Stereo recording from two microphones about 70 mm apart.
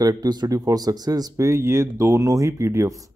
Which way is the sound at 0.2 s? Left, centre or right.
Right.